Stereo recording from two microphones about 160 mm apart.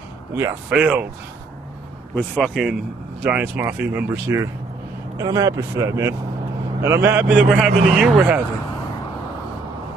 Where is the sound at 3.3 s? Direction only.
10° right (ahead or behind).